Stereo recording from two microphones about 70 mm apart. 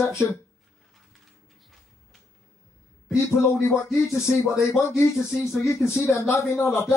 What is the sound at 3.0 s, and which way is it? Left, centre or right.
Speech, left.